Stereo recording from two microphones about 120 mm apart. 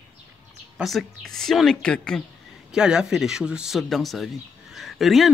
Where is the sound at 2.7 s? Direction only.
5° right (ahead or behind).